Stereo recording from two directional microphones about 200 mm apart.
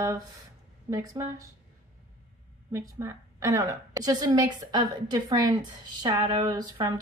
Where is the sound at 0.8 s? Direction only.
15° right (ahead or behind).